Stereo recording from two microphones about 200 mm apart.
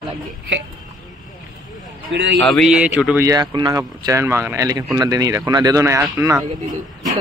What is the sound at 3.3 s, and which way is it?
Speech, 20° right (ahead or behind).